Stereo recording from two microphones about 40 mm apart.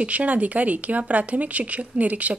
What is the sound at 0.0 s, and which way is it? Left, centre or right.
Speech, right.